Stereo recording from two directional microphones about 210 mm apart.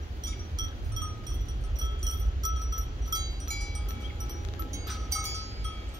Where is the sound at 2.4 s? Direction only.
20° right (ahead or behind).